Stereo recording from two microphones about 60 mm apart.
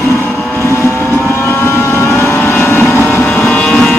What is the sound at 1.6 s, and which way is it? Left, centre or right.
Vehicle, left.